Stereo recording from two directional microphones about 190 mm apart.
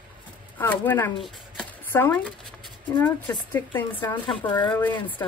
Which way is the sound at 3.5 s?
10° left (ahead or behind).